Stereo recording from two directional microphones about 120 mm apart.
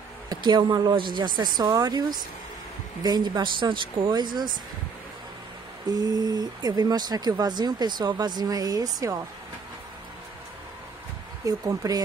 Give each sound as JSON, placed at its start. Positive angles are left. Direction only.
{"t": 0.3, "sound": "speech", "side_deg": -35}
{"t": 5.9, "sound": "speech", "side_deg": -30}
{"t": 11.4, "sound": "speech", "side_deg": -30}